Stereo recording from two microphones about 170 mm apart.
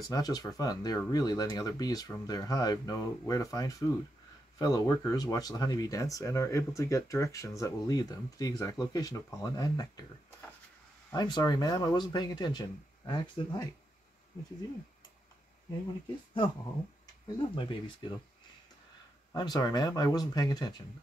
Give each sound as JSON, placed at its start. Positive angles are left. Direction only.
{"t": 0.0, "sound": "speech", "side_deg": 20}
{"t": 11.1, "sound": "speech", "side_deg": 25}
{"t": 17.4, "sound": "speech", "side_deg": 30}
{"t": 19.3, "sound": "speech", "side_deg": 25}